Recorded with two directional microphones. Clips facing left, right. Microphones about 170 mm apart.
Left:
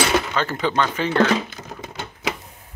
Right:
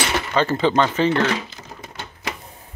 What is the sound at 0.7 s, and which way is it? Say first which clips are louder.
Speech: right 2 dB; 20° right (ahead or behind).